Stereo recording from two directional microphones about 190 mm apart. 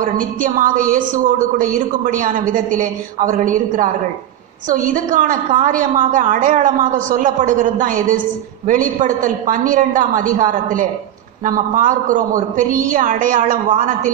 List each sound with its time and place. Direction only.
0.0 s a woman's voice: 45° right (ahead or behind)